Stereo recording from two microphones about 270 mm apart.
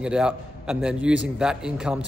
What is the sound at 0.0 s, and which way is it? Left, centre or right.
A man's voice, centre.